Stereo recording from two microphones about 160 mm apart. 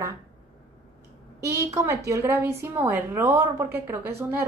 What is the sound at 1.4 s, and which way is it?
A woman's voice, 15° right (ahead or behind).